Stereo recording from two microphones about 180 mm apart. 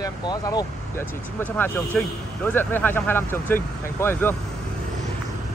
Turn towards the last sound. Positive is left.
turn(degrees=10)  # may be behind; listen again after turning